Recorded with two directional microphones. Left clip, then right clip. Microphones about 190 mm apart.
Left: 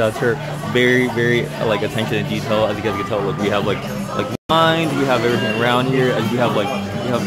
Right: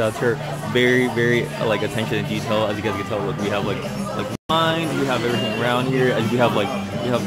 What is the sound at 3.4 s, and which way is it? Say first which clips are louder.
Speech: left 4 dB; 20° left (ahead or behind).